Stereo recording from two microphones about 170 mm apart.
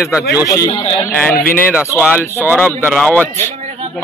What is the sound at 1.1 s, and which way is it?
A man's voice, 5° left (ahead or behind).